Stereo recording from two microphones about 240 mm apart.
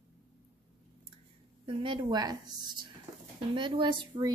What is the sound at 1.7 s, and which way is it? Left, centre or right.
A woman's voice, right.